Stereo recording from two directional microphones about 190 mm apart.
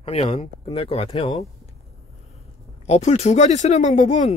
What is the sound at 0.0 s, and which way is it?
Speech, 30° left (ahead or behind).